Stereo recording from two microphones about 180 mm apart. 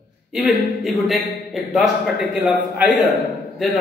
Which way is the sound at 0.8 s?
Centre (ahead or behind).